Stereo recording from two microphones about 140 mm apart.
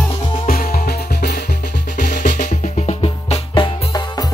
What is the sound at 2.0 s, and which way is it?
Music, 65° left (ahead or behind).